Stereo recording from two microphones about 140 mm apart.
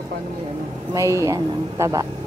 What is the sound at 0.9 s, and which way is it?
Speech, 20° right (ahead or behind).